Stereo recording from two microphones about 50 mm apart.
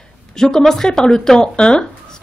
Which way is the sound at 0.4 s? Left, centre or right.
Centre.